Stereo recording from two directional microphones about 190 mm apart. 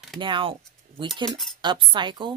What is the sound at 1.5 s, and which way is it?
Speech, 25° right (ahead or behind).